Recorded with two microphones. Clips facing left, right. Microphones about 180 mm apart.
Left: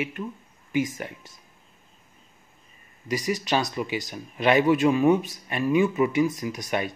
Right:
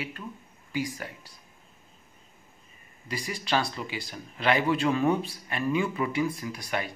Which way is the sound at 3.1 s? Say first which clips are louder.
Left 5 dB; 20° left (ahead or behind).